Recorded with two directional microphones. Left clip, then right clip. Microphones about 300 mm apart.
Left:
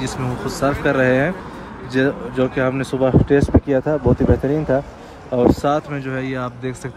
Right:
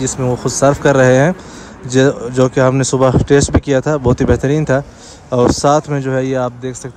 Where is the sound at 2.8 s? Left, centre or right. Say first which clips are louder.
Right 5 dB; left.